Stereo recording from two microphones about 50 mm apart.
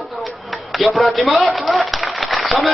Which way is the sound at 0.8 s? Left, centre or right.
Centre.